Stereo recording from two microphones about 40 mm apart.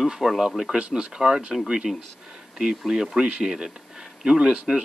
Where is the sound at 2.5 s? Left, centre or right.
Centre.